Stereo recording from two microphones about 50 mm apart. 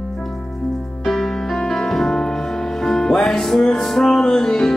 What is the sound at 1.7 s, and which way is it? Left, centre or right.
Music, centre.